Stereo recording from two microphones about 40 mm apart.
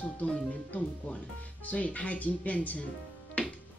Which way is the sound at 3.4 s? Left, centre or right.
Left.